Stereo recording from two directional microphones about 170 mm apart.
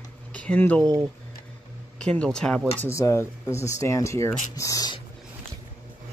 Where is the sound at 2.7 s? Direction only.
15° left (ahead or behind).